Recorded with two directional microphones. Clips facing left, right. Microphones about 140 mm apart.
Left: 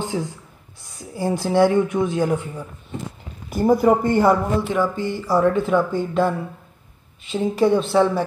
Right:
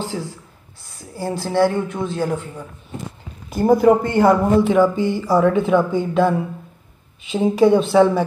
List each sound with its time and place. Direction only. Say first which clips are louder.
0.0 s a sound: left 1 dB; 15° left (ahead or behind)
0.9 s speech: left 2 dB; 15° left (ahead or behind)
4.1 s speech: right 2 dB; 15° right (ahead or behind)
4.7 s speech: right 6 dB; centre (ahead or behind)